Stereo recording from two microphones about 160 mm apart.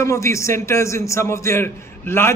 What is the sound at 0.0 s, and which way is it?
A man's voice, 20° left (ahead or behind).